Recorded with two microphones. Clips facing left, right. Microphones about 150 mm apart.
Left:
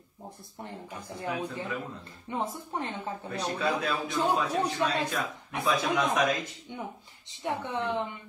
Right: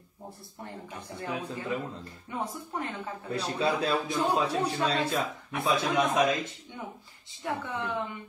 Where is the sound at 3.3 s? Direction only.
30° right (ahead or behind).